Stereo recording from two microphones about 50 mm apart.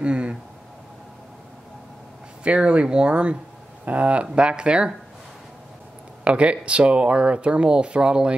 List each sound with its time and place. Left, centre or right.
0.0 s a sound: right
2.4 s speech: right
6.2 s speech: right